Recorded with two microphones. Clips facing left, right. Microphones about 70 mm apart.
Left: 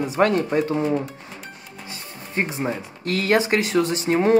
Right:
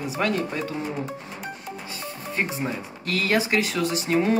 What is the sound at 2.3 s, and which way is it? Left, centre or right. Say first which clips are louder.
Speech: left 3 dB; left.